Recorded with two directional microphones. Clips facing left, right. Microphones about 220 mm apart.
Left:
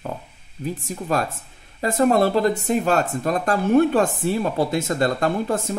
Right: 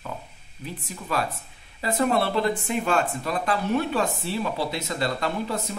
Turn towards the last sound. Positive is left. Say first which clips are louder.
# left 6 dB
turn(degrees=50)  # may be behind; listen again after turning